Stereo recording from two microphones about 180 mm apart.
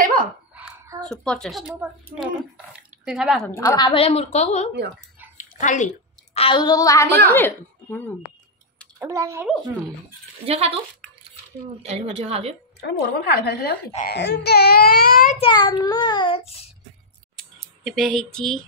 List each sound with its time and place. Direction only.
0.0 s a sound: 50° right (ahead or behind)
1.0 s speech: 5° left (ahead or behind)
3.1 s speech: centre (ahead or behind)
3.4 s a woman's voice: 10° left (ahead or behind)
3.7 s a woman's voice: 25° left (ahead or behind)
5.4 s a sound: 45° left (ahead or behind)
6.3 s a woman's voice: 30° left (ahead or behind); by 8.1 s 10° left (ahead or behind)
9.0 s a child's voice: 15° right (ahead or behind)
10.4 s a woman's voice: 35° right (ahead or behind)
12.8 s speech: 60° left (ahead or behind)
15.3 s a woman's voice: 30° left (ahead or behind)
17.4 s a sound: centre (ahead or behind)